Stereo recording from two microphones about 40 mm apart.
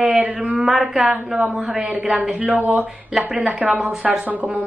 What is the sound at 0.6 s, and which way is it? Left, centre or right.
A woman's voice, centre.